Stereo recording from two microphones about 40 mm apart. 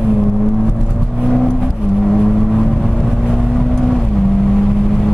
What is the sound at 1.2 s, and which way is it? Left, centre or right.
Vehicle, centre.